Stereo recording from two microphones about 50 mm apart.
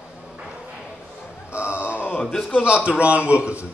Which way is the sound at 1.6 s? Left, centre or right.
Left.